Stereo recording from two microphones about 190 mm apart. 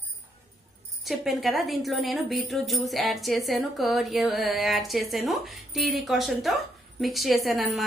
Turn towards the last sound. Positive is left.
turn(degrees=0)  # may be behind; listen again after turning